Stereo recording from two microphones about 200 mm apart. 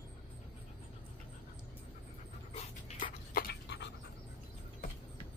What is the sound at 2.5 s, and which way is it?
Dog, 40° left (ahead or behind).